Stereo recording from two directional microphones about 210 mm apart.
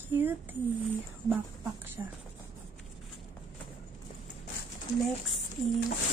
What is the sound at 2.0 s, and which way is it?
Speech, 15° right (ahead or behind).